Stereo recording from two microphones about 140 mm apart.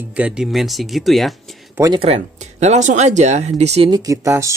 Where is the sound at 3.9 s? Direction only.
25° right (ahead or behind).